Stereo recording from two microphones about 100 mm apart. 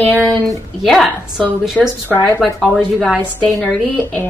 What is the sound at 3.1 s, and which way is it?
A woman's voice, 15° left (ahead or behind).